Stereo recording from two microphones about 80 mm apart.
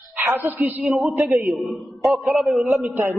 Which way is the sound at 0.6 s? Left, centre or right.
Right.